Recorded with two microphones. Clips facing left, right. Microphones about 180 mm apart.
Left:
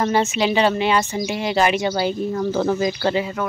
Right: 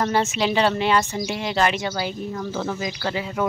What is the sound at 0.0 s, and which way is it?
Speech, centre (ahead or behind).